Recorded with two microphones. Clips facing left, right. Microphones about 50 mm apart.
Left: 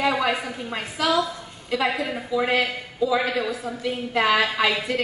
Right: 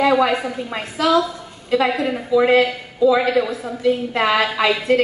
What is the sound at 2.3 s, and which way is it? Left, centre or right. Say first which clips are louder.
Speech: right 8 dB; right.